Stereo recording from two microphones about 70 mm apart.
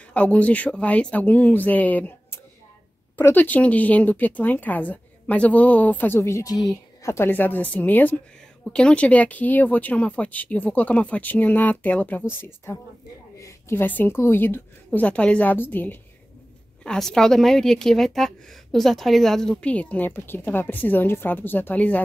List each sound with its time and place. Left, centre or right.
0.1 s speech: centre
3.2 s speech: left
7.0 s a sound: left
7.2 s speech: left
13.4 s a sound: left
13.7 s a woman's voice: left
14.9 s speech: centre
16.8 s a woman's voice: centre
19.6 s speech: centre